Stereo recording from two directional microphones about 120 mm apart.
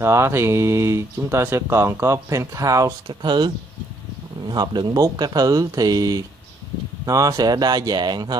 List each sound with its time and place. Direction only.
0.0 s speech: 20° right (ahead or behind)